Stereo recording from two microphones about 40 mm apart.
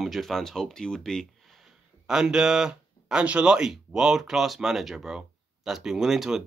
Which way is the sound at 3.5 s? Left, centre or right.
Centre.